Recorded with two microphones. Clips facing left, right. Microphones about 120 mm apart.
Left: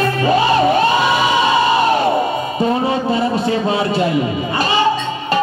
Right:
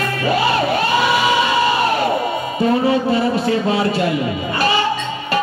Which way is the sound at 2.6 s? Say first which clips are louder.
Right 2 dB; 25° left (ahead or behind).